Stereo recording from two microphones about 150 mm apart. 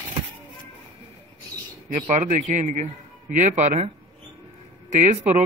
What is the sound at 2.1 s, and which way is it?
A man's voice, 55° right (ahead or behind).